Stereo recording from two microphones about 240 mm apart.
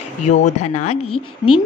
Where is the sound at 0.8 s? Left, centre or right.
Left.